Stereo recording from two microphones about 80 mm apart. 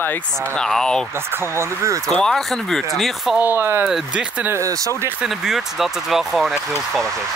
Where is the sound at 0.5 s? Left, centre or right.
Centre.